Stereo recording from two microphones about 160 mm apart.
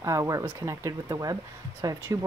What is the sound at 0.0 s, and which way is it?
Speech, 20° right (ahead or behind).